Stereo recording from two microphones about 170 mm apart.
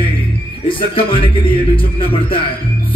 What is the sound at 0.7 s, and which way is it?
Speech, 30° left (ahead or behind).